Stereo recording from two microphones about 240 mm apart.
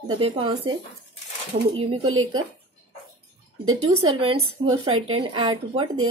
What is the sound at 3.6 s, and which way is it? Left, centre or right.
Speech, right.